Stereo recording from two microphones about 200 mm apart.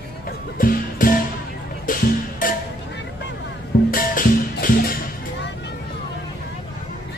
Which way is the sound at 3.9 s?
45° left (ahead or behind).